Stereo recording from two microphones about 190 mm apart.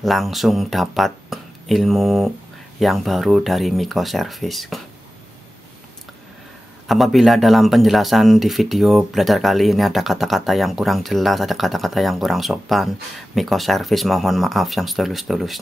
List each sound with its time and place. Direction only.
0.0 s speech: centre (ahead or behind)
6.9 s speech: centre (ahead or behind)